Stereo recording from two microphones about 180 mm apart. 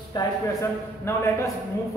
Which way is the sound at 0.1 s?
20° left (ahead or behind).